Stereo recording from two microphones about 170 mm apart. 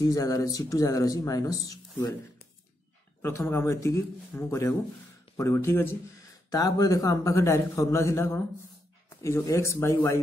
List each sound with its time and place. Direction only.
0.0 s speech: 20° left (ahead or behind)
3.2 s speech: 15° left (ahead or behind)